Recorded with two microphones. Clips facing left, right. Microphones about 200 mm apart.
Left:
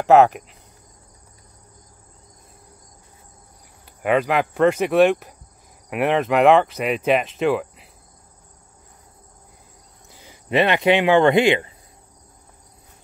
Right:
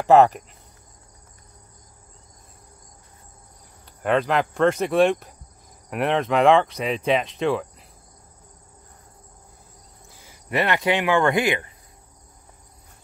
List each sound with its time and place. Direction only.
0.0 s speech: centre (ahead or behind)
4.0 s speech: 5° left (ahead or behind)
10.0 s speech: 20° left (ahead or behind)